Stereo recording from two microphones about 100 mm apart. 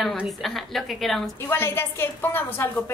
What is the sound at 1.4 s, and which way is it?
A woman's voice, 25° left (ahead or behind).